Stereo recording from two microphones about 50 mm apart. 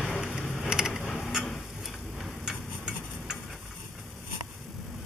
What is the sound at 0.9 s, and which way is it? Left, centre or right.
Mechanisms, centre.